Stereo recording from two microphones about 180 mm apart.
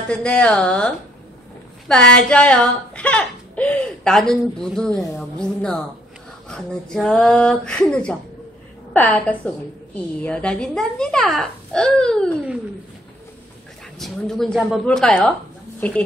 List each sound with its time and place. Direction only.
0.1 s a woman's voice: 5° left (ahead or behind)
13.9 s a woman's voice: centre (ahead or behind)